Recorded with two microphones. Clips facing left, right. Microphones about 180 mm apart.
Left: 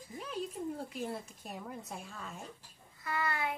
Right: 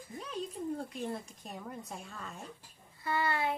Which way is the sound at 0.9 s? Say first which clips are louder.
Right 1 dB; 5° left (ahead or behind).